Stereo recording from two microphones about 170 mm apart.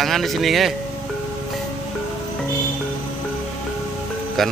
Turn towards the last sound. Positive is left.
turn(degrees=0)  # may be behind; listen again after turning